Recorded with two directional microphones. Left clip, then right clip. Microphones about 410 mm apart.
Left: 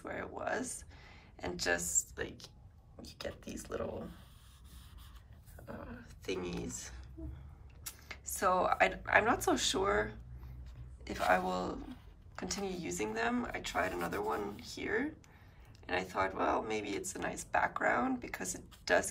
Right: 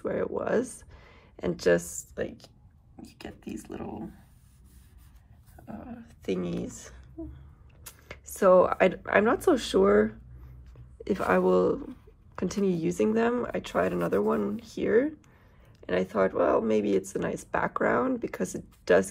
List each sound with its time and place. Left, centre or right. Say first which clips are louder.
0.0 s a sound: right 10 dB; centre
3.6 s speech: left 3 dB; left
5.7 s speech: right 4 dB; centre